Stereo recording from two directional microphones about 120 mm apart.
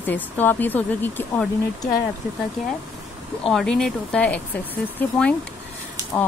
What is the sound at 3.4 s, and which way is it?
Speech, 5° left (ahead or behind).